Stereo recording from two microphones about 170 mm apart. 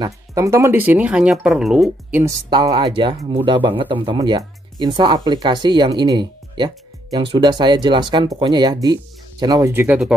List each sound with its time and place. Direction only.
0.0 s speech: 20° right (ahead or behind)
2.5 s speech: 25° right (ahead or behind); by 10.1 s 5° right (ahead or behind)